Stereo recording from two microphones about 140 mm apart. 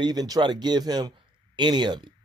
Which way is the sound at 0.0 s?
30° right (ahead or behind).